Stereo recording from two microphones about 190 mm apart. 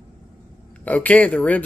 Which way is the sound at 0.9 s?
10° left (ahead or behind).